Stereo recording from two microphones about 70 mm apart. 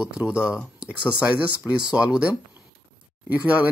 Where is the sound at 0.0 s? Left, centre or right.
Centre.